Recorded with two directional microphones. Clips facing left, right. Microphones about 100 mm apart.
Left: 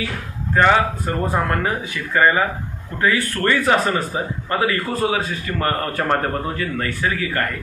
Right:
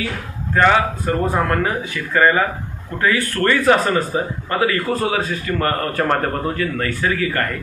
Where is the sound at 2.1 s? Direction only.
10° left (ahead or behind).